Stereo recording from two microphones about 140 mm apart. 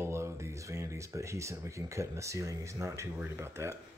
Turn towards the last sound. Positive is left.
turn(degrees=-20)  # may be behind; listen again after turning